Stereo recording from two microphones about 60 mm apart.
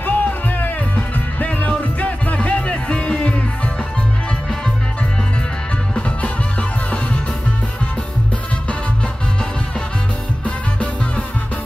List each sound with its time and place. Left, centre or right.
0.0 s music: left
5.9 s music: centre
10.4 s music: left